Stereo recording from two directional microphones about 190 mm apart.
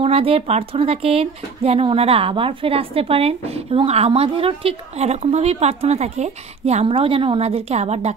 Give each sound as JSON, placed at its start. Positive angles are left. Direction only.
{"t": 0.0, "sound": "speech", "side_deg": -30}